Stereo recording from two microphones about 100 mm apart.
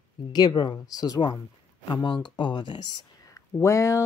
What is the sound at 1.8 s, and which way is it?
Speech, 50° left (ahead or behind).